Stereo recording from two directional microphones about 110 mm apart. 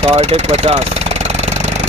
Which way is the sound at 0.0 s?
85° right.